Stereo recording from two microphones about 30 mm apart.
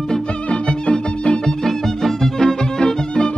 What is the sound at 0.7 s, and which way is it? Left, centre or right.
Music, left.